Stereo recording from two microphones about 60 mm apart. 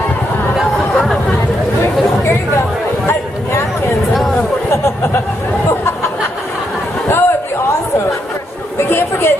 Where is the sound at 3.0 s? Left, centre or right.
Left.